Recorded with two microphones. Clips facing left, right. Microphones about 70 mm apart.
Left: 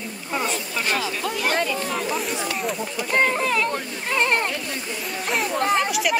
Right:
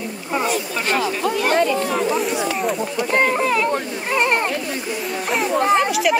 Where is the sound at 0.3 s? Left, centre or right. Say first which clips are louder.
Right 5 dB; centre.